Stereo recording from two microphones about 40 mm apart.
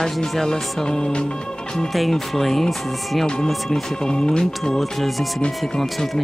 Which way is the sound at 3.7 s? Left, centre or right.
Centre.